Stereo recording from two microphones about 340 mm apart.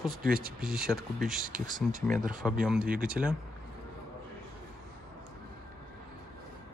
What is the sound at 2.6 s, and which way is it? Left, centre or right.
Speech, centre.